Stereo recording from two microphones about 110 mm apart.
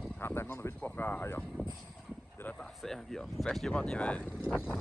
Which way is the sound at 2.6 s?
5° left (ahead or behind).